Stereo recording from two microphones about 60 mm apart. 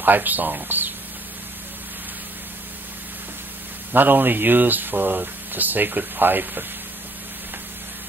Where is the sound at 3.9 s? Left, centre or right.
Right.